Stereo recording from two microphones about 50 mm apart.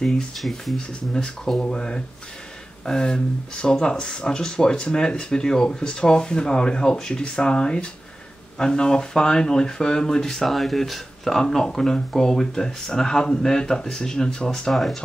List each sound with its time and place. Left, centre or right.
0.0 s speech: centre
14.7 s speech: centre